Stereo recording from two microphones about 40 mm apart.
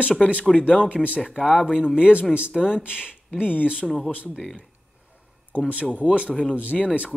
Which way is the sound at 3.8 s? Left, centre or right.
Centre.